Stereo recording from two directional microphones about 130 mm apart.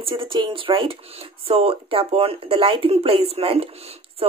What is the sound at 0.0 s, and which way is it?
Speech, 40° right (ahead or behind).